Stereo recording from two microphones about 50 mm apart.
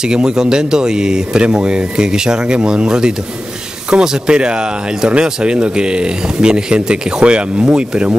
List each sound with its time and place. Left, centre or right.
0.0 s speech: centre